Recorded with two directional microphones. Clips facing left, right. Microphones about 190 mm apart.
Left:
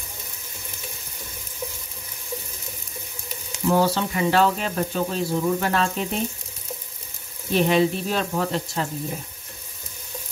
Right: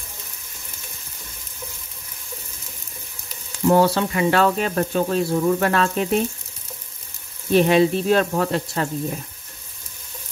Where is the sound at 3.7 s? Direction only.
60° right (ahead or behind).